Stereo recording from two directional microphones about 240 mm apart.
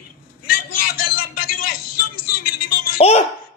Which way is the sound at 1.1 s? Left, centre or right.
Left.